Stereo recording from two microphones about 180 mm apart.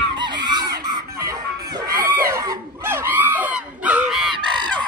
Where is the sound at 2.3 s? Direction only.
15° right (ahead or behind).